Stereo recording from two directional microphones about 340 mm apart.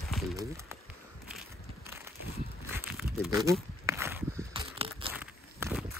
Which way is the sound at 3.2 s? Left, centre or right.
Centre.